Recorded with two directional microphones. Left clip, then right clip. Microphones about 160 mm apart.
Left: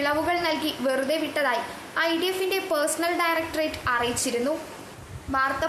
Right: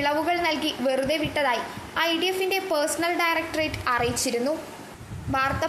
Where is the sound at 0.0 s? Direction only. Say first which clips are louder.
Right 1 dB; 10° right (ahead or behind).